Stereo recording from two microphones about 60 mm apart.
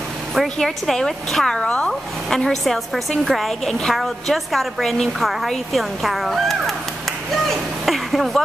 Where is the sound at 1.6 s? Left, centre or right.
Left.